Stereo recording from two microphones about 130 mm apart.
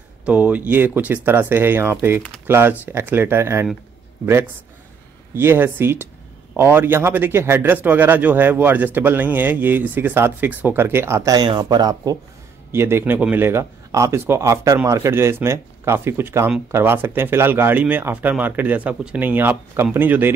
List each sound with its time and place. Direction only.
0.2 s a man's voice: 10° right (ahead or behind)
5.3 s a man's voice: 15° right (ahead or behind)
12.7 s a man's voice: 20° right (ahead or behind)